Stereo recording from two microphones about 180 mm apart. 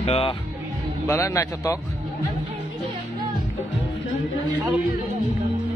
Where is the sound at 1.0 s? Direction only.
15° left (ahead or behind).